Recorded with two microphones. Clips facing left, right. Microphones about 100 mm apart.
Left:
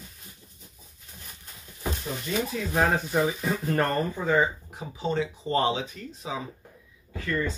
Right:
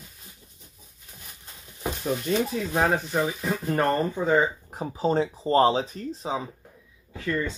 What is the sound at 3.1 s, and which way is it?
Speech, centre (ahead or behind).